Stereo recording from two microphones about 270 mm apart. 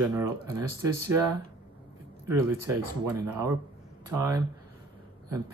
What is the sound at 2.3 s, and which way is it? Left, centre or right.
Speech, centre.